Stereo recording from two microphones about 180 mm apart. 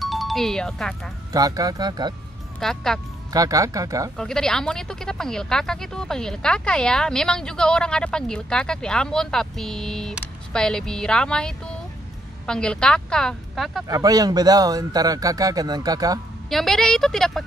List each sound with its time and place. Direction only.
0.0 s speech: centre (ahead or behind)
1.3 s speech: 20° right (ahead or behind)
2.6 s speech: 5° left (ahead or behind)
3.3 s speech: 20° right (ahead or behind)
4.2 s speech: 5° left (ahead or behind)
13.8 s speech: 20° right (ahead or behind)
16.4 s speech: centre (ahead or behind)